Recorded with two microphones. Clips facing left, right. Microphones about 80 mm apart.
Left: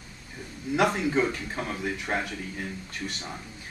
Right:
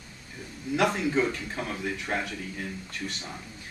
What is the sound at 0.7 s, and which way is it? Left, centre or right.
Speech, centre.